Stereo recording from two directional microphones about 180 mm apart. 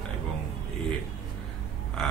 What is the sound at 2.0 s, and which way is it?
Speech, centre (ahead or behind).